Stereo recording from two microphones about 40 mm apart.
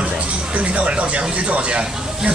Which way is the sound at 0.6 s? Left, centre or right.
Right.